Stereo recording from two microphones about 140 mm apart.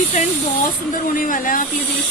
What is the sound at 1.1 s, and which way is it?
Speech, 75° left (ahead or behind).